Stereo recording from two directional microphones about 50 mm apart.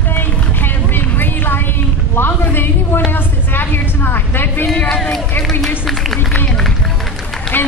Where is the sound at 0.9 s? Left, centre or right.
Left.